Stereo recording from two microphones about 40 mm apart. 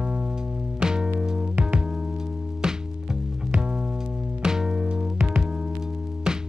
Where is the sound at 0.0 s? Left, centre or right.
Right.